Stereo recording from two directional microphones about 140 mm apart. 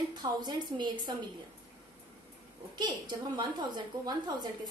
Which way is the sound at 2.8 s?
30° right (ahead or behind).